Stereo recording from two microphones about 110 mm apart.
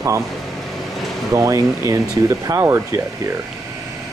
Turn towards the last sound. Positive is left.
turn(degrees=-25)  # may be behind; listen again after turning